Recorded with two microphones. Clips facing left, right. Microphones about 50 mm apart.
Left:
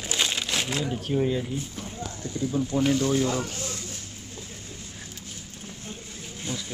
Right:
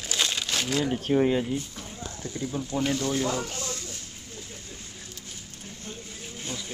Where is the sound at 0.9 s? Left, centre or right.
Right.